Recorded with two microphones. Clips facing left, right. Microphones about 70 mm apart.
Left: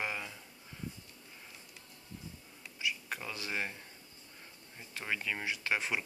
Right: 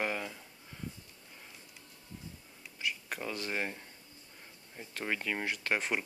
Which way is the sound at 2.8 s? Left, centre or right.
Right.